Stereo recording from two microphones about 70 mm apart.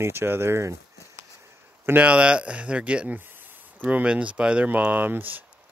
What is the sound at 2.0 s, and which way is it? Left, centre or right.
Speech, centre.